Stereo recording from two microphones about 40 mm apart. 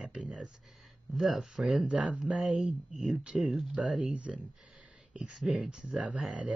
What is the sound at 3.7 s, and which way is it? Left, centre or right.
Speech, right.